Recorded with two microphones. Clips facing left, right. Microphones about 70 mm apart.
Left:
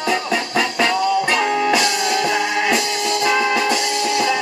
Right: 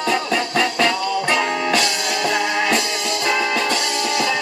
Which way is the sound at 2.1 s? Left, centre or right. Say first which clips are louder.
Left 2 dB; centre.